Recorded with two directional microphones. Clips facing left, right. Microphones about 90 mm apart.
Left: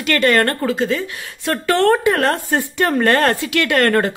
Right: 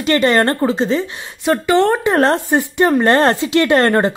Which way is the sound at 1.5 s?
15° right (ahead or behind).